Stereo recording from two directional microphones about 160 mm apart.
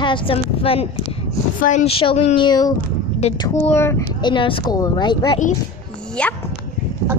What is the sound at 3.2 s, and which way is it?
Speech, 40° left (ahead or behind).